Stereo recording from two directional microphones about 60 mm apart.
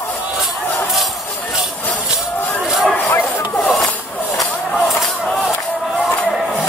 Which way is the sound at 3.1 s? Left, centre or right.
Left.